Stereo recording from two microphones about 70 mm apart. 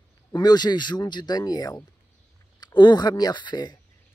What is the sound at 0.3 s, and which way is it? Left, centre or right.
Speech, left.